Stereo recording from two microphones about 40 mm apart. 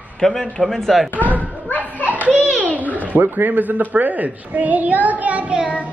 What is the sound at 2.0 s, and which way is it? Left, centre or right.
Belly laugh, right.